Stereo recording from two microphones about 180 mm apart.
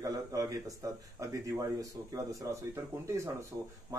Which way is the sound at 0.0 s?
20° right (ahead or behind).